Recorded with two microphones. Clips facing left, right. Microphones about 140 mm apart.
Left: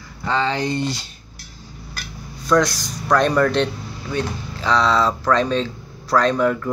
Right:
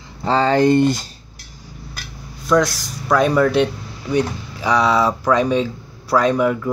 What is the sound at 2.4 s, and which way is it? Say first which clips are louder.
Speech: right 1 dB; centre (ahead or behind).